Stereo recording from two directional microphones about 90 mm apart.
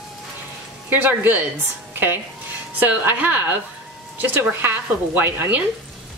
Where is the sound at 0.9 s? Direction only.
20° right (ahead or behind).